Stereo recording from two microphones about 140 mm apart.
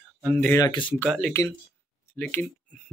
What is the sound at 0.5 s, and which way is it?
Speech, 30° left (ahead or behind).